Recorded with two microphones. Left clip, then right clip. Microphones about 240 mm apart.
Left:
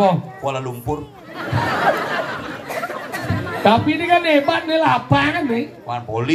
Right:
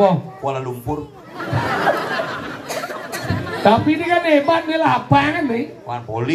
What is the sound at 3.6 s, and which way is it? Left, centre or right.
A man's voice, left.